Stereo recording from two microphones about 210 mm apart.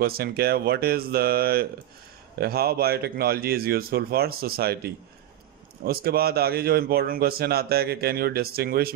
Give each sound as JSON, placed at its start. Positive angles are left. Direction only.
{"t": 0.0, "sound": "a man's voice", "side_deg": -45}